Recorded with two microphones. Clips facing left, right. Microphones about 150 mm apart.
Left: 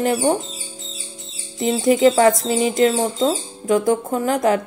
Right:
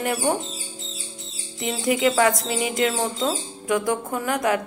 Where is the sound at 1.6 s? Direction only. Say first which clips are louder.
Left 7 dB; 35° left (ahead or behind).